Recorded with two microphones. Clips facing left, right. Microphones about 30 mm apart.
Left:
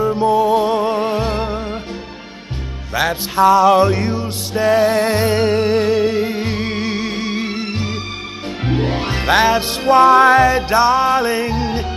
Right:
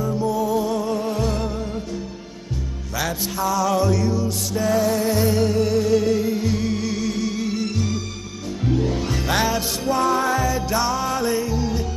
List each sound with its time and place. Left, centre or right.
0.0 s music: left
2.9 s music: left